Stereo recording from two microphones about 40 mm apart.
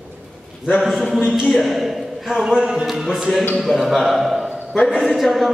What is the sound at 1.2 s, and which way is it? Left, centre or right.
Speech, centre.